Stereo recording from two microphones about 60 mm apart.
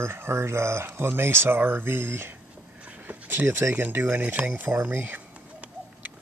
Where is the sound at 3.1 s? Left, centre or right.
Right.